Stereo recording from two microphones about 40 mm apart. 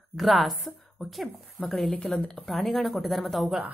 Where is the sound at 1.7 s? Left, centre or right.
Left.